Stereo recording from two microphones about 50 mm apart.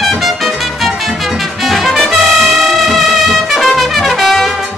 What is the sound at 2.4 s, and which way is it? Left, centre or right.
Brass instrument, centre.